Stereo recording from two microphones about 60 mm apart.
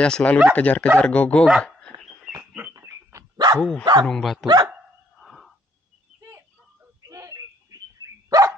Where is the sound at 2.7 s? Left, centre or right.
Right.